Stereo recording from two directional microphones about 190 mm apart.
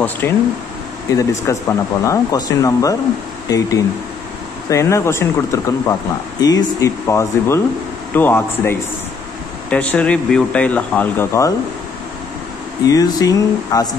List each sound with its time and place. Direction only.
0.2 s speech: 10° left (ahead or behind)
12.8 s speech: 20° left (ahead or behind)